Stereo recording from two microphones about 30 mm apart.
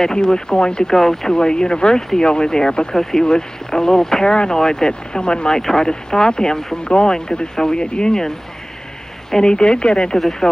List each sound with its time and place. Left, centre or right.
0.0 s speech: left
0.9 s speech: centre
1.3 s speech: left
5.6 s speech: centre
9.3 s speech: left